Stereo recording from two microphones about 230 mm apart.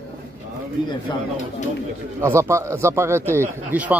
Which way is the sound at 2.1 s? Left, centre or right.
Centre.